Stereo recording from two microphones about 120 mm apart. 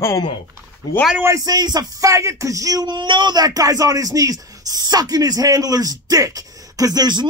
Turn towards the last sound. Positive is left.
turn(degrees=-35)  # may be behind; listen again after turning